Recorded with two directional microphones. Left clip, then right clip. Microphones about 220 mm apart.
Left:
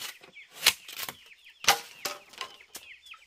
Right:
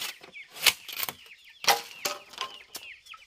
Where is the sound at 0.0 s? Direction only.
10° right (ahead or behind).